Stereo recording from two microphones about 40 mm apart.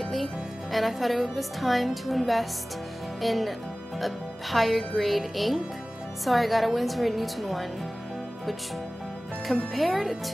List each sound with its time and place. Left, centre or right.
0.0 s speech: centre
9.5 s speech: centre